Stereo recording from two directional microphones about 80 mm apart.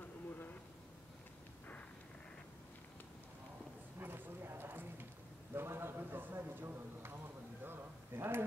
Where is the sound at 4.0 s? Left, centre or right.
Right.